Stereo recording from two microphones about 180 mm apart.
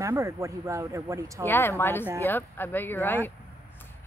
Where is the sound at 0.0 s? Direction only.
15° right (ahead or behind).